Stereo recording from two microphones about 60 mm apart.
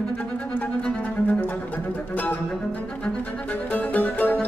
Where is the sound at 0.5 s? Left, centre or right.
Left.